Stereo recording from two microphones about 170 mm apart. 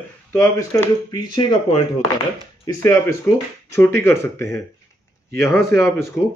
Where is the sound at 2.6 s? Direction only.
15° left (ahead or behind).